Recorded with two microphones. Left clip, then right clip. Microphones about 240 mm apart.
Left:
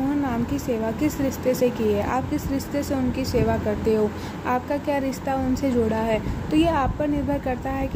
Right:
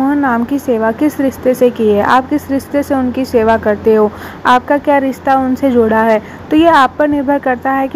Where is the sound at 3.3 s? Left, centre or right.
Centre.